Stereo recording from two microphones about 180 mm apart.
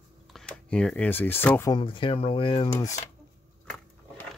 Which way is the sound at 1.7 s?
30° left (ahead or behind).